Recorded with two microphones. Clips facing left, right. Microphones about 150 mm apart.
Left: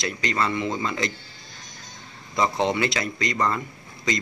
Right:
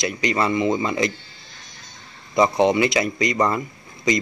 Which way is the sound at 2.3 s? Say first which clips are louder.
Right 6 dB; 15° right (ahead or behind).